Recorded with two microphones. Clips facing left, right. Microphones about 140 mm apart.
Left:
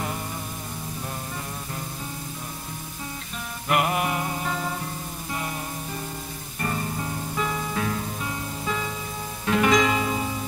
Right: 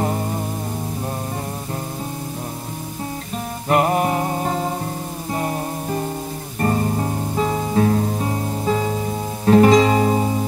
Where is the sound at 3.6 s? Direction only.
35° right (ahead or behind).